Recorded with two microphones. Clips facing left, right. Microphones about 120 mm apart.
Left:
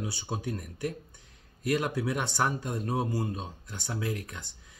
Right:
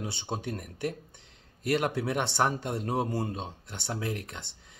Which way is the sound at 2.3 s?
25° right (ahead or behind).